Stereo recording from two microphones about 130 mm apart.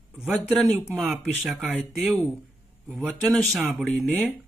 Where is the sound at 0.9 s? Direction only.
5° right (ahead or behind).